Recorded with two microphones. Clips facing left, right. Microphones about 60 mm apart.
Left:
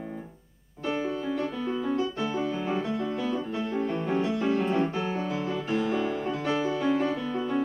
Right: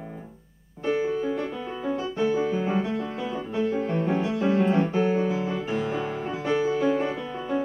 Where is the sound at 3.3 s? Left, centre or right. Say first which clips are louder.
Right 3 dB; centre.